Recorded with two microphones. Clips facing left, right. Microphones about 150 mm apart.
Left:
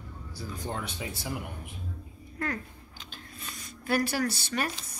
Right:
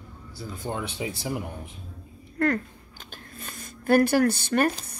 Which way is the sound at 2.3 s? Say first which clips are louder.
Right 10 dB; 60° right (ahead or behind).